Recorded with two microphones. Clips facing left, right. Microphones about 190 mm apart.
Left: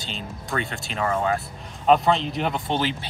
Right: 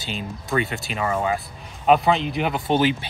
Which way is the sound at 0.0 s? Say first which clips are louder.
Right 3 dB; 5° right (ahead or behind).